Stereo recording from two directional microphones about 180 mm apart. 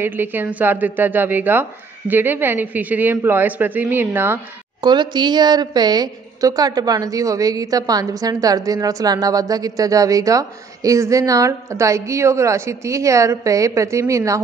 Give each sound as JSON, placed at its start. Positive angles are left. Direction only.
{"t": 0.0, "sound": "a woman's voice", "side_deg": -10}
{"t": 4.8, "sound": "a woman's voice", "side_deg": -25}